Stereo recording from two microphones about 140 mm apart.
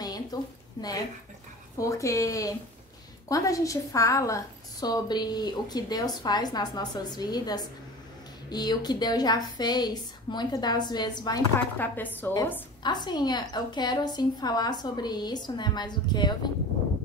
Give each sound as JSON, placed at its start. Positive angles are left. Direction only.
{"t": 0.0, "sound": "a sound", "side_deg": 25}
{"t": 1.8, "sound": "a woman's voice", "side_deg": 20}
{"t": 11.8, "sound": "a woman's voice", "side_deg": 15}
{"t": 12.8, "sound": "a woman's voice", "side_deg": 30}